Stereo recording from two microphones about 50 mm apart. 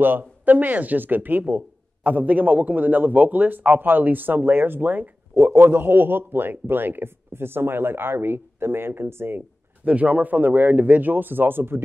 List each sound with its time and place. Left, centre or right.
0.0 s a man's voice: right
9.8 s a man's voice: right